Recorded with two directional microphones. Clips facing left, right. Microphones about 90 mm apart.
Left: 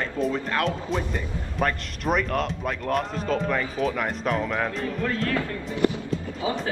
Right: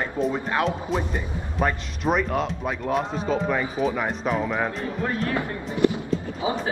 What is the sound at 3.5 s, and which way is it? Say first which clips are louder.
Speech: right 1 dB; 15° right (ahead or behind).